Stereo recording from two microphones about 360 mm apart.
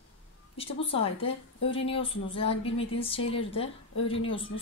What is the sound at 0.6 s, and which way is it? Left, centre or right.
A woman's voice, centre.